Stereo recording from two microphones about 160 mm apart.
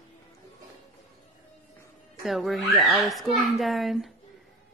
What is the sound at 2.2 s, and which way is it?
Speech, centre (ahead or behind).